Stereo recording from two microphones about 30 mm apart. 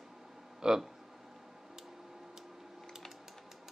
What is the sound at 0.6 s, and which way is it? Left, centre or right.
Speech, right.